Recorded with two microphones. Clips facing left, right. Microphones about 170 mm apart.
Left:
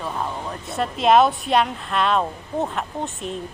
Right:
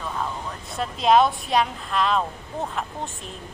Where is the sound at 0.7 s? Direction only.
Centre (ahead or behind).